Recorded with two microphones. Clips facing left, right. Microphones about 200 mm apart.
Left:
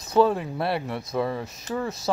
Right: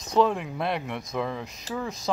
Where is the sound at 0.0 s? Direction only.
5° left (ahead or behind).